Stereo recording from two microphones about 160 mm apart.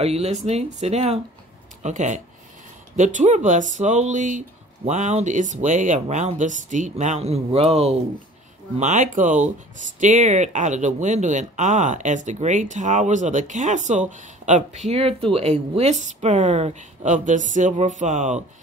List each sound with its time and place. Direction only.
0.0 s speech: 40° right (ahead or behind)